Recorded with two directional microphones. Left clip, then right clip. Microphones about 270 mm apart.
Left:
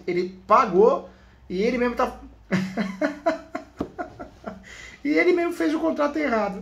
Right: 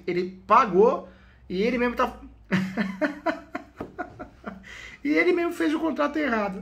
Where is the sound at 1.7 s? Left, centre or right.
Centre.